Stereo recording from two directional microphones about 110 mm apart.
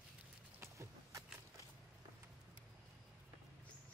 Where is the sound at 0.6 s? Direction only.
30° right (ahead or behind).